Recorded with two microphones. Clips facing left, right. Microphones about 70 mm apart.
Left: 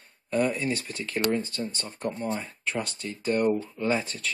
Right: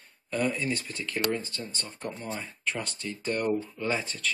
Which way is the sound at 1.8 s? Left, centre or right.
Centre.